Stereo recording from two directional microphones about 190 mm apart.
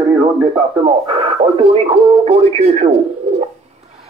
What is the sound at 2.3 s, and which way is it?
Speech, 35° right (ahead or behind).